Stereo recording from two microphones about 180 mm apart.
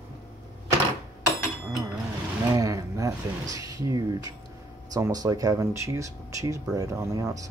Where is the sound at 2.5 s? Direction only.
20° right (ahead or behind).